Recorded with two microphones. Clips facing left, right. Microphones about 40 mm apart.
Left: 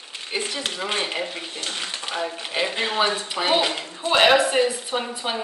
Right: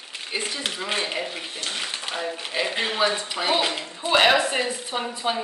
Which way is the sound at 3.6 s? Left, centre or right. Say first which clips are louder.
Left 1 dB; centre.